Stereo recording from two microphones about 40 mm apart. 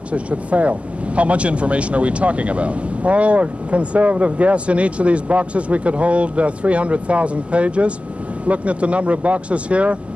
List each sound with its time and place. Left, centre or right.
0.1 s speech: right